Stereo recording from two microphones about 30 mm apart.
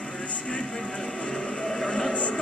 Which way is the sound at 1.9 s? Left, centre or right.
Centre.